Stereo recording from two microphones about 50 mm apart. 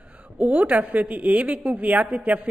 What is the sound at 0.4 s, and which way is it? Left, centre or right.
A woman's voice, right.